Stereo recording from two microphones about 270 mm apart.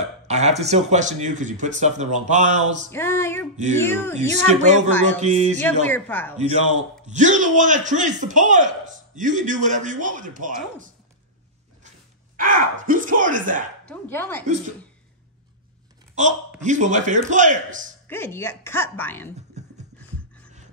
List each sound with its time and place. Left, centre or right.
0.3 s a man's voice: right
2.9 s speech: centre
4.3 s a man's voice: right
5.9 s speech: centre
6.3 s a man's voice: right
12.4 s a man's voice: right
13.8 s speech: centre
16.6 s a man's voice: right
18.0 s speech: centre